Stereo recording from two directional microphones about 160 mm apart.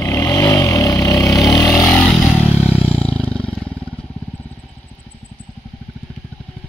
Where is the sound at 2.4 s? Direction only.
10° right (ahead or behind).